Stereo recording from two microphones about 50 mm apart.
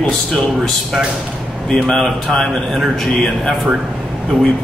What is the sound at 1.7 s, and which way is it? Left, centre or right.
Mantra, centre.